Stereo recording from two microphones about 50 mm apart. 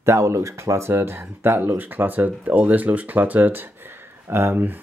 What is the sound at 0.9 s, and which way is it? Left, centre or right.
Speech, right.